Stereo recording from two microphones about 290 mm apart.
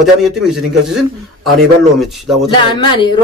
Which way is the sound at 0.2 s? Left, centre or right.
Centre.